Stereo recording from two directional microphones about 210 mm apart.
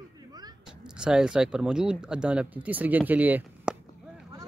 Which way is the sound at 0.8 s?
5° right (ahead or behind).